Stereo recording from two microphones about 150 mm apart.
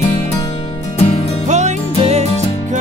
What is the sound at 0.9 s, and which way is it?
Music, 45° left (ahead or behind).